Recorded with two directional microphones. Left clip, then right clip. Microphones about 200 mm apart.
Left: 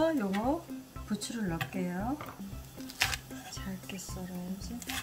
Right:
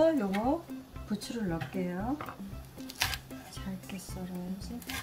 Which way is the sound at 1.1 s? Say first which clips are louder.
Right 1 dB; 20° left (ahead or behind).